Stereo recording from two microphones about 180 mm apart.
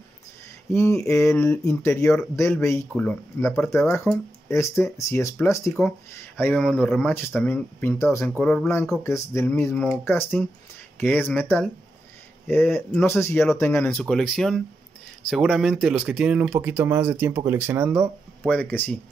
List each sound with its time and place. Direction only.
0.7 s speech: 15° left (ahead or behind)
5.7 s speech: 5° left (ahead or behind)
18.5 s speech: 10° left (ahead or behind)